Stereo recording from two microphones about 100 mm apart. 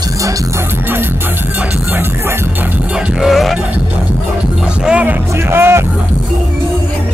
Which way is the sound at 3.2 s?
Centre (ahead or behind).